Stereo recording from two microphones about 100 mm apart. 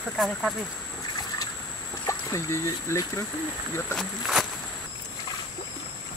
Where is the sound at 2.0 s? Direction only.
30° left (ahead or behind).